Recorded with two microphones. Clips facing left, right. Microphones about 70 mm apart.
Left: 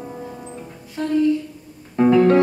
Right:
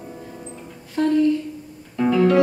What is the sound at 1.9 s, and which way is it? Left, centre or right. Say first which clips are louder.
Music: left 3 dB; left.